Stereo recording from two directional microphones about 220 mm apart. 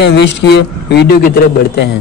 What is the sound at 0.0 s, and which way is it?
Speech, 50° left (ahead or behind).